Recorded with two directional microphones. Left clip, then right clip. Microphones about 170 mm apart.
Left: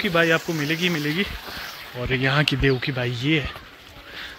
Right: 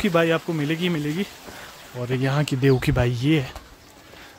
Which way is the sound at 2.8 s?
40° right (ahead or behind).